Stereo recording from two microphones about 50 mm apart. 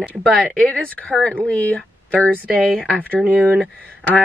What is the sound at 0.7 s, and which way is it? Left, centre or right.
Speech, left.